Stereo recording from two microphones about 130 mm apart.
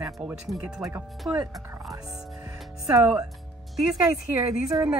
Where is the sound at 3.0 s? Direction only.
25° right (ahead or behind).